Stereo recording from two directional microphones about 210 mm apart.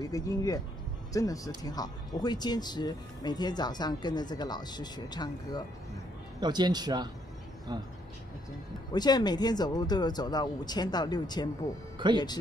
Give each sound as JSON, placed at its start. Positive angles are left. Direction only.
{"t": 0.0, "sound": "speech", "side_deg": 15}
{"t": 6.4, "sound": "speech", "side_deg": -20}
{"t": 8.9, "sound": "speech", "side_deg": 20}
{"t": 12.0, "sound": "speech", "side_deg": -20}